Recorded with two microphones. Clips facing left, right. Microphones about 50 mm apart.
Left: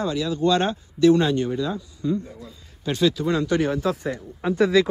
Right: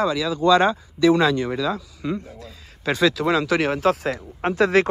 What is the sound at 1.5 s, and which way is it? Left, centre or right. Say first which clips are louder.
Speech: right 2 dB; right.